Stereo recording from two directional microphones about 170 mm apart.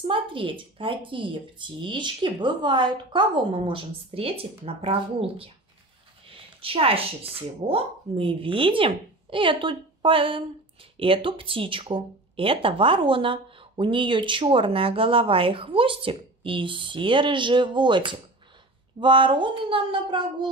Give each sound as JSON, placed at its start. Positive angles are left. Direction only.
{"t": 0.0, "sound": "speech", "side_deg": -30}